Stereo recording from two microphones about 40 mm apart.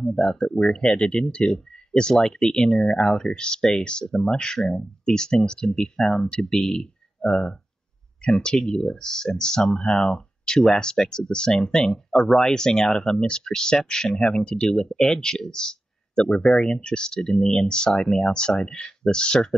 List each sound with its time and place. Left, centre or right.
0.0 s speech: centre